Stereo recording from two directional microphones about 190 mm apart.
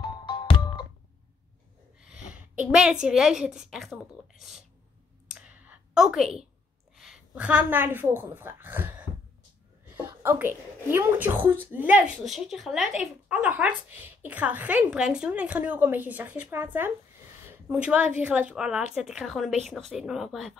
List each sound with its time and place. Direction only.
0.0 s music: 25° left (ahead or behind)
2.0 s a woman's voice: 5° right (ahead or behind)
5.3 s a sound: 5° right (ahead or behind)
7.0 s speech: 5° right (ahead or behind)
10.0 s a woman's voice: 10° right (ahead or behind)